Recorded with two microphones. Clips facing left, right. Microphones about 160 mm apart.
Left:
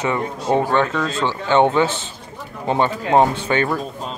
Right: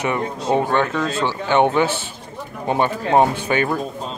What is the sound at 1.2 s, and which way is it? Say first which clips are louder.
Speech: even; 20° left (ahead or behind).